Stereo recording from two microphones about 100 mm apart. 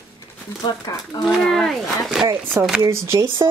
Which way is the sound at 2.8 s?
30° right (ahead or behind).